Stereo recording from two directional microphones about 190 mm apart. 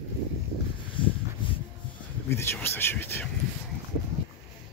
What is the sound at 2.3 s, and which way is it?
Speech, 10° left (ahead or behind).